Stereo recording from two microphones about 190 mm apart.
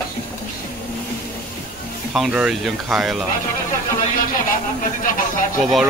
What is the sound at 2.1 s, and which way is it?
Speech, centre (ahead or behind).